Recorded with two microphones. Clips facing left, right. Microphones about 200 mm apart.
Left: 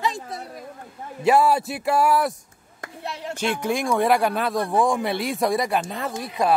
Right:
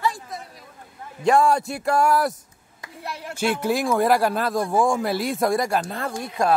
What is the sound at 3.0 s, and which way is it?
Speech, 25° left (ahead or behind).